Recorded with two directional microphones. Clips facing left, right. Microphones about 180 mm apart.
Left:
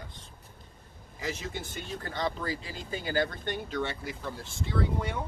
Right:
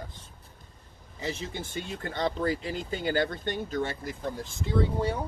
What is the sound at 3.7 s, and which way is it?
Speech, 45° right (ahead or behind).